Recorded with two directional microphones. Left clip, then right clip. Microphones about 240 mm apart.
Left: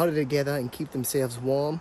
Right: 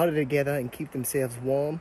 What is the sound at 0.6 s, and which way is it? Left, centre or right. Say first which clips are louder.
Speech: left 2 dB; left.